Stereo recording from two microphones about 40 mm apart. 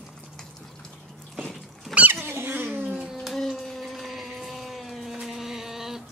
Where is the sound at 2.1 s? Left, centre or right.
Right.